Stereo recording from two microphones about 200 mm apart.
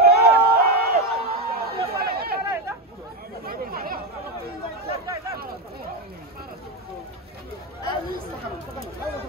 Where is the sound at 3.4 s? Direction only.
50° right (ahead or behind).